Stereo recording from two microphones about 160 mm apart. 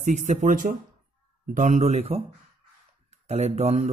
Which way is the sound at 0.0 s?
50° right (ahead or behind).